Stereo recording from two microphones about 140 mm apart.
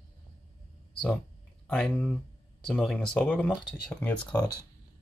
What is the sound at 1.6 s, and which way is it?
Speech, 5° left (ahead or behind).